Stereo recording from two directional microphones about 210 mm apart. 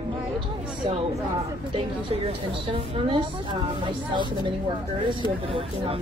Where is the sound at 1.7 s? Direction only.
25° right (ahead or behind).